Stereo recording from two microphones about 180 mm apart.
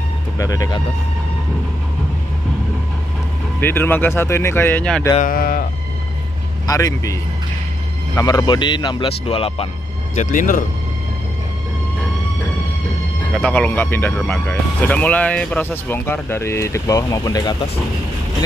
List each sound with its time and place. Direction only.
0.4 s speech: 20° left (ahead or behind)
3.6 s speech: 10° left (ahead or behind)
5.2 s speech: 50° left (ahead or behind)
6.7 s speech: 15° left (ahead or behind)
8.2 s speech: 20° left (ahead or behind)
10.1 s speech: 45° left (ahead or behind)
13.3 s speech: 5° left (ahead or behind)